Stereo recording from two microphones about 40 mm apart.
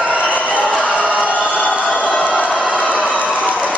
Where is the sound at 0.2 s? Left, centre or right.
Left.